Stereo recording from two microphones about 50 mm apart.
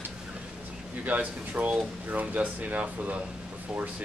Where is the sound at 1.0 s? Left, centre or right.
Right.